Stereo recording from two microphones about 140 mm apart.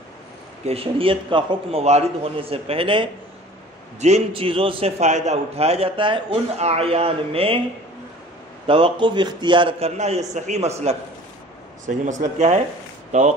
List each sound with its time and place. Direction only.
0.7 s a man's voice: 40° right (ahead or behind)
8.6 s a man's voice: 40° right (ahead or behind)
12.1 s speech: 60° right (ahead or behind)